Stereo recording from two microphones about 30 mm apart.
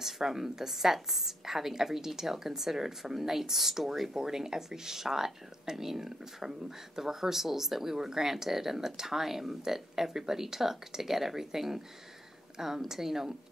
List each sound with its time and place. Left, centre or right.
0.0 s speech: centre
4.1 s speech: centre